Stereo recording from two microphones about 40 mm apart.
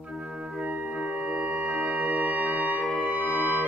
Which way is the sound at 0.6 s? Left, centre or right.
Right.